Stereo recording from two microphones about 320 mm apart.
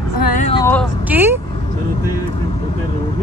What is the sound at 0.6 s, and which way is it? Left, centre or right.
Speech, centre.